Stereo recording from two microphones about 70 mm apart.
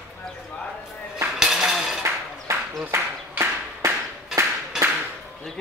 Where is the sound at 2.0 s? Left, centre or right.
Right.